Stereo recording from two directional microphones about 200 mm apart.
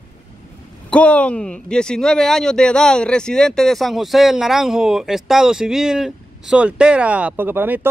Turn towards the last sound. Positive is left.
turn(degrees=-10)  # may be behind; listen again after turning